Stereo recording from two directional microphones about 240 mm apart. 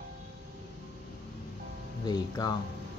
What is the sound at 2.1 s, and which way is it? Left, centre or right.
Speech, centre.